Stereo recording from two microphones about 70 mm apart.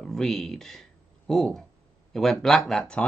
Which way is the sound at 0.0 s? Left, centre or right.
Centre.